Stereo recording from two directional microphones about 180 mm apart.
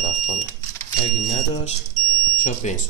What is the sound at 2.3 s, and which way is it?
Speech, 45° left (ahead or behind).